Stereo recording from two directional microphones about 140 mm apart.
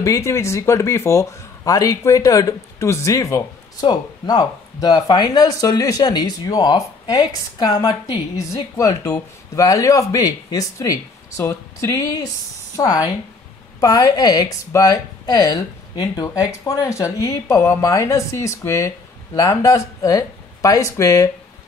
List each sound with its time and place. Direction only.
0.0 s speech: 20° left (ahead or behind)